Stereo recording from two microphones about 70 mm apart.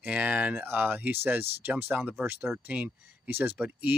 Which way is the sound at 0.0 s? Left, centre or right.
Right.